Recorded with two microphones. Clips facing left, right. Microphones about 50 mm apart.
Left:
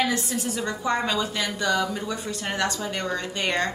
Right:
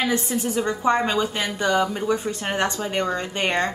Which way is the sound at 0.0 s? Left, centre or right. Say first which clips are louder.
Right 2 dB; right.